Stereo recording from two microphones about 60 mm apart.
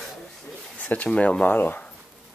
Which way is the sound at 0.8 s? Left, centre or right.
Left.